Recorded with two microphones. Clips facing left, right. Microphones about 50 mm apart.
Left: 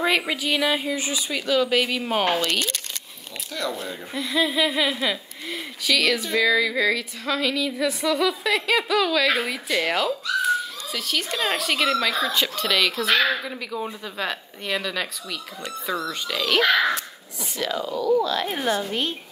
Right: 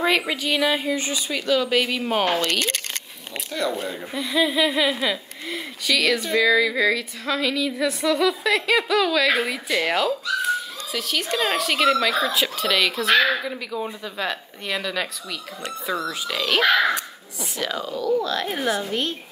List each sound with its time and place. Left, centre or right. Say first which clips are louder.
0.0 s speech: right 1 dB; centre
1.0 s speech: right 1 dB; centre
2.6 s a sound: right 3 dB; right
3.6 s speech: right 3 dB; centre
4.1 s speech: right 1 dB; centre